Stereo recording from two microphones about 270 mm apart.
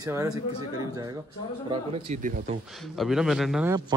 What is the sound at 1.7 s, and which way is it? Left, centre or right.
Speech, right.